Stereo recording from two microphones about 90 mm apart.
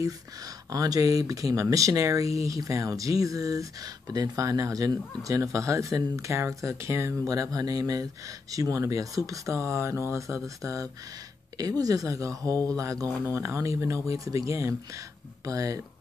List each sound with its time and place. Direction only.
0.7 s speech: 40° right (ahead or behind)